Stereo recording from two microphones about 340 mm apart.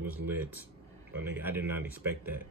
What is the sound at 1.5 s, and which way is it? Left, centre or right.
Speech, centre.